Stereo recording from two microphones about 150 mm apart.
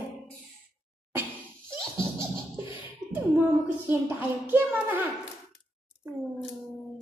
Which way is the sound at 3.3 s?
15° right (ahead or behind).